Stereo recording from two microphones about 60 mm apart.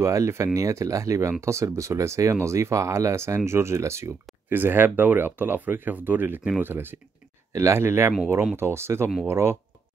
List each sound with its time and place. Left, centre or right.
0.0 s speech: right
4.5 s speech: right
7.5 s speech: right